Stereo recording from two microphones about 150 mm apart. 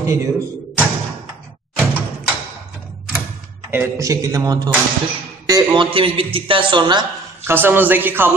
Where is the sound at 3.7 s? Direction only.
20° right (ahead or behind).